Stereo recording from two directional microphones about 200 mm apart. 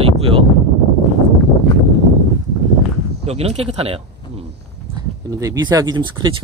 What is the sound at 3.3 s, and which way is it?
Speech, 30° right (ahead or behind).